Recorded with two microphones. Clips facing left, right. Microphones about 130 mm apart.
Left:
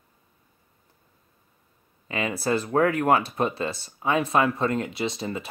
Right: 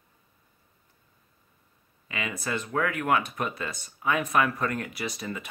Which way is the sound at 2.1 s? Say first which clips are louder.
Left 7 dB; 35° left (ahead or behind).